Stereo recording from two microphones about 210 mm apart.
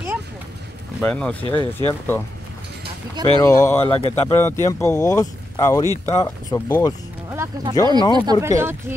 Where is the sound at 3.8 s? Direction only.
30° left (ahead or behind).